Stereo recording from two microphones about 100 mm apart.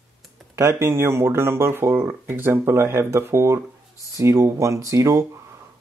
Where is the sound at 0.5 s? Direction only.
25° right (ahead or behind).